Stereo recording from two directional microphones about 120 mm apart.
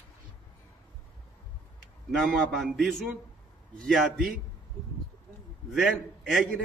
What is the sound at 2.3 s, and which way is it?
A man's voice, centre (ahead or behind).